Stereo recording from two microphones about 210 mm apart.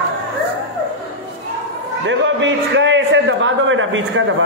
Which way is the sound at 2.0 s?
60° right (ahead or behind).